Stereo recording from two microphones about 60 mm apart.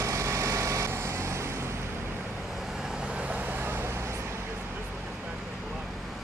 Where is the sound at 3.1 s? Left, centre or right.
Right.